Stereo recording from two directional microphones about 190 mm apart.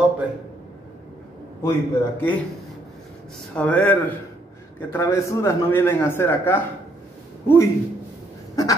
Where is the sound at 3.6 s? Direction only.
5° left (ahead or behind).